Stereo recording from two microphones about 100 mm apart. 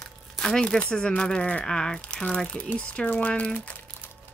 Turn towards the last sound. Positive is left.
turn(degrees=15)  # may be behind; listen again after turning